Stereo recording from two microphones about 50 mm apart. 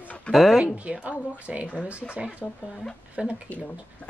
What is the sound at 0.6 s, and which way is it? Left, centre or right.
A woman's voice, right.